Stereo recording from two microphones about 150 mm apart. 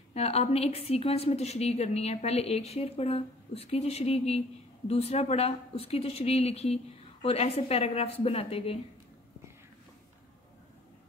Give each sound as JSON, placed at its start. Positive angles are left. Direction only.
{"t": 0.1, "sound": "a woman's voice", "side_deg": 45}